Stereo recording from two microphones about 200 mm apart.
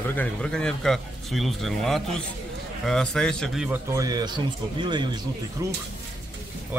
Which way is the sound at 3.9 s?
20° right (ahead or behind).